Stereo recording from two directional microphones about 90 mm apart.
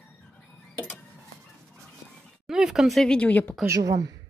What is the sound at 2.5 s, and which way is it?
Speech, 5° right (ahead or behind).